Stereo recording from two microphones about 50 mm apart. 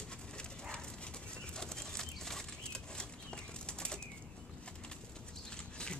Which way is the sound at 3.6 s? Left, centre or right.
Centre.